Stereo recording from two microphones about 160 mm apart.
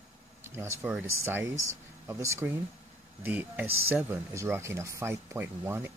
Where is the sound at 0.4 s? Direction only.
15° right (ahead or behind).